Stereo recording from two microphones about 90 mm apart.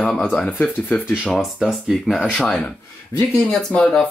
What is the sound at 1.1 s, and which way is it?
Speech, 5° right (ahead or behind).